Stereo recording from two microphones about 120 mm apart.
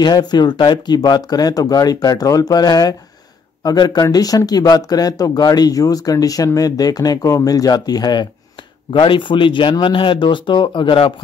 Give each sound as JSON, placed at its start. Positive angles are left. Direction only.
{"t": 0.0, "sound": "speech", "side_deg": 35}